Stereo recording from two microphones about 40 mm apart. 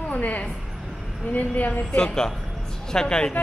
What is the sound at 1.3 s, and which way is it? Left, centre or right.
Speech, left.